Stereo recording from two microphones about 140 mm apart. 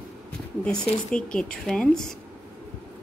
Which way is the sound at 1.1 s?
5° left (ahead or behind).